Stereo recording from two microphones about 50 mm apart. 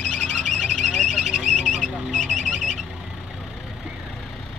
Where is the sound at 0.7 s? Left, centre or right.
Centre.